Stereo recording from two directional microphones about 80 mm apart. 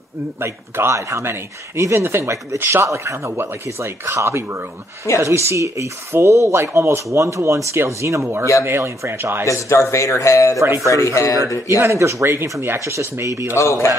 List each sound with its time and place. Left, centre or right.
0.4 s speech: right
3.2 s speech: right
9.5 s speech: left
11.7 s speech: right
13.6 s speech: left